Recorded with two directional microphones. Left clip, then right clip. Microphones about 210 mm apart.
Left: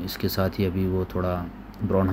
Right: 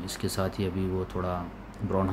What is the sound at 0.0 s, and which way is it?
Speech, 5° left (ahead or behind).